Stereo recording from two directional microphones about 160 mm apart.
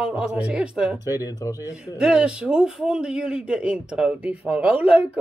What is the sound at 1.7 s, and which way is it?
A woman's voice, 5° right (ahead or behind).